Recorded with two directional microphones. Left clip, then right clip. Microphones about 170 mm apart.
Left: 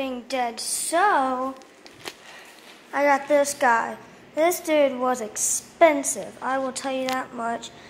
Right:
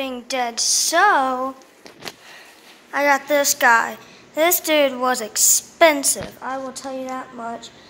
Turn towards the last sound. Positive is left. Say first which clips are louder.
# left 2 dB
turn(degrees=10)  # may be behind; listen again after turning